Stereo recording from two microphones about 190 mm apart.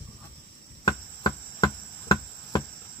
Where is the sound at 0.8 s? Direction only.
20° left (ahead or behind).